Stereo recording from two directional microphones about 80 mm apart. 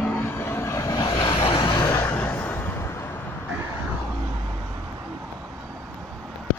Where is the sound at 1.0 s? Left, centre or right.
Left.